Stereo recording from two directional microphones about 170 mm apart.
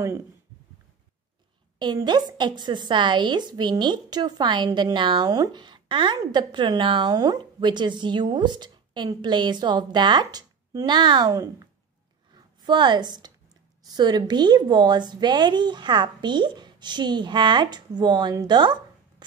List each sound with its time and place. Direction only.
1.8 s a woman's voice: 25° right (ahead or behind)